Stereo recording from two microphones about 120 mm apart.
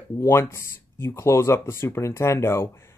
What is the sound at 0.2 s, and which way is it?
Speech, 20° left (ahead or behind).